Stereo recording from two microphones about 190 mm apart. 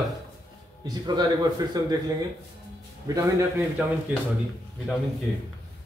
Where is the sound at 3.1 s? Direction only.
15° right (ahead or behind).